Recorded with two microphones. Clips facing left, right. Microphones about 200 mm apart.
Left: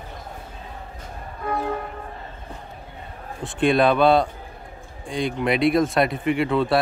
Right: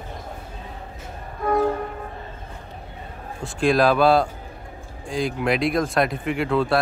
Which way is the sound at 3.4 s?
Centre (ahead or behind).